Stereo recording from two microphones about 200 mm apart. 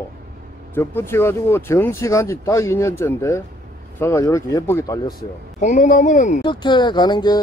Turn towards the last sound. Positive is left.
turn(degrees=20)  # may be behind; listen again after turning